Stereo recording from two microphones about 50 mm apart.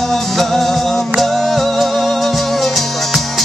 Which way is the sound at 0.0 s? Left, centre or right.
Centre.